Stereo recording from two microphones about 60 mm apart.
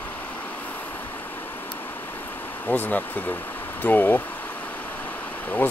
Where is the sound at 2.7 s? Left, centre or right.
Left.